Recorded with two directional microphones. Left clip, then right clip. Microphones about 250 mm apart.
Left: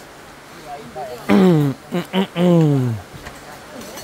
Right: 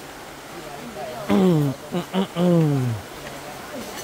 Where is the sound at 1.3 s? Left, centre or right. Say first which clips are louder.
Left 5 dB; left.